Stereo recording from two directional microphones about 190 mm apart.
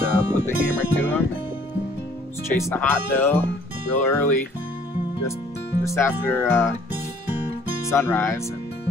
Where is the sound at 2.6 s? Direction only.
10° left (ahead or behind).